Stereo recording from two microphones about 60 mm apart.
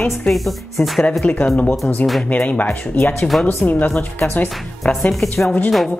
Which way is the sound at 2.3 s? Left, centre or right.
Left.